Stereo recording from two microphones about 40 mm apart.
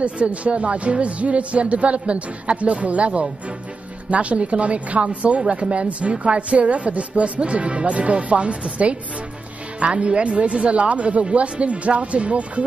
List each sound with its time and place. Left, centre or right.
0.0 s speech: right